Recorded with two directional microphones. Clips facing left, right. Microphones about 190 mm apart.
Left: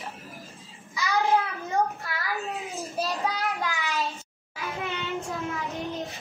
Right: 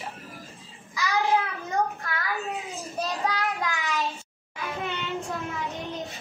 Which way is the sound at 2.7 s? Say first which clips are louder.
Left 1 dB; 15° left (ahead or behind).